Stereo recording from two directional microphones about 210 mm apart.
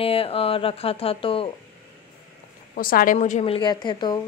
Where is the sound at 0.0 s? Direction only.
25° left (ahead or behind).